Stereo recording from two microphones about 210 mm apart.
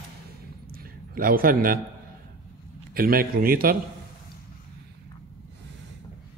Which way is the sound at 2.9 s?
45° right (ahead or behind).